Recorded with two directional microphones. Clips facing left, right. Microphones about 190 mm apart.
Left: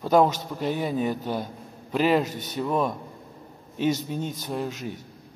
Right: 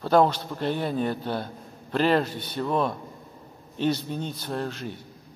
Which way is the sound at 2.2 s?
45° left (ahead or behind).